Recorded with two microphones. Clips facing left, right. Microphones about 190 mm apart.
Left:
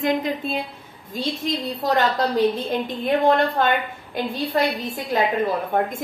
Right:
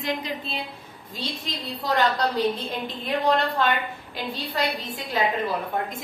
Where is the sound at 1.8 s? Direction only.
45° left (ahead or behind).